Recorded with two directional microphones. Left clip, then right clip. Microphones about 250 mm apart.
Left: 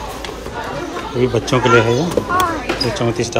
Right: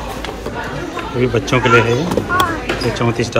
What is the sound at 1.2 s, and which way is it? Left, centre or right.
Speech, centre.